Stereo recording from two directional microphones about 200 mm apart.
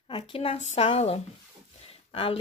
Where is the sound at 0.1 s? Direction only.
25° left (ahead or behind).